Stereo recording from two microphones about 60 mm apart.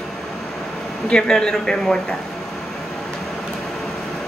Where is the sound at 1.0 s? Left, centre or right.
Centre.